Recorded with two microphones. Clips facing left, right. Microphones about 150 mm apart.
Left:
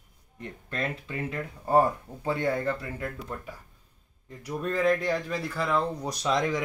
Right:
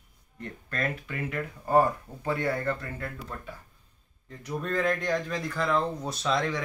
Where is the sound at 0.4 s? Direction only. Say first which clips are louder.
Even; 20° left (ahead or behind).